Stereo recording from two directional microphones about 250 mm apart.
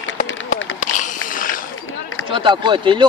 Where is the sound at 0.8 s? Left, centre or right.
Left.